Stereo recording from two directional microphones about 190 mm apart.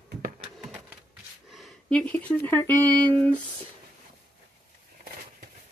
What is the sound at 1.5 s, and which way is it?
Speech, centre (ahead or behind).